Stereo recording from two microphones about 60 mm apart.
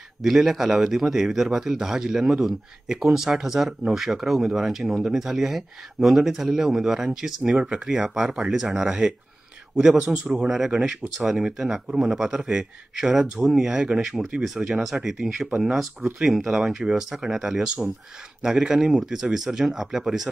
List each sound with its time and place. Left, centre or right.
0.2 s speech: centre
9.9 s a man's voice: centre
10.5 s speech: centre